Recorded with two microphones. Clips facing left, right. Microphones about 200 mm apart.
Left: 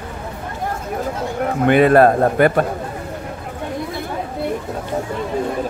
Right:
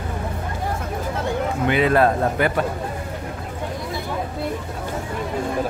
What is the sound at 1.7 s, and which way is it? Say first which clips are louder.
Speech: left 6 dB; 50° left (ahead or behind).